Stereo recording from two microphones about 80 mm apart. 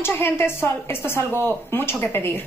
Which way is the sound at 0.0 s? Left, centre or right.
Left.